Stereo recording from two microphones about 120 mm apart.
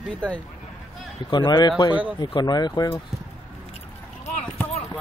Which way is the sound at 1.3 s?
35° left (ahead or behind).